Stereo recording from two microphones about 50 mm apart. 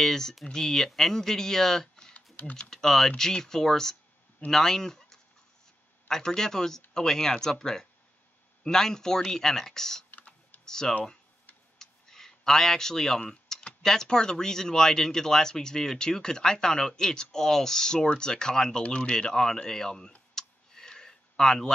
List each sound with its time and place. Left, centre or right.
0.0 s speech: centre
10.1 s typing: left
10.6 s speech: centre
11.8 s a sound: centre
13.2 s speech: centre
20.3 s clicking: centre